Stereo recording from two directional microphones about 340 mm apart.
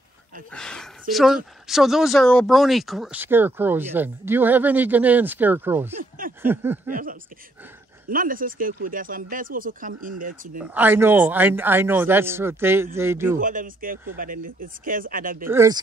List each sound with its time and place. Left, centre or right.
0.5 s a man's voice: centre
6.9 s speech: right
10.6 s a man's voice: centre
13.4 s speech: right
15.4 s a man's voice: centre